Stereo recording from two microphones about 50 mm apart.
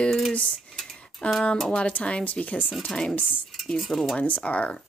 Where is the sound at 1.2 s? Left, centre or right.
Left.